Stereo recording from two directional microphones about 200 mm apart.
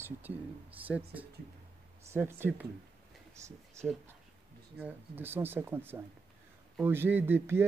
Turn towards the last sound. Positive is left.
turn(degrees=-10)  # may be behind; listen again after turning